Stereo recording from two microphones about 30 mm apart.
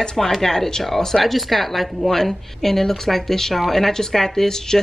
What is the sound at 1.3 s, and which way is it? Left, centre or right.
Speech, centre.